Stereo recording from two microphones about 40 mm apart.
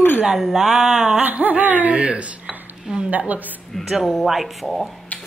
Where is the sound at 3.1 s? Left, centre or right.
Right.